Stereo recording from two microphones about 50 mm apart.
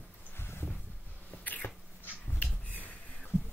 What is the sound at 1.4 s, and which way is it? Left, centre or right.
Cat, left.